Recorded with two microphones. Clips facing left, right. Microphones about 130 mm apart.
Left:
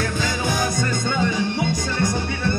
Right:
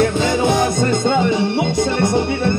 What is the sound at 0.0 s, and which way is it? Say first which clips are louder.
Music: right 9 dB; 25° right (ahead or behind).